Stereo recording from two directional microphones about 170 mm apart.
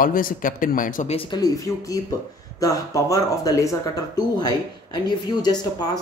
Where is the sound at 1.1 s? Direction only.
35° left (ahead or behind).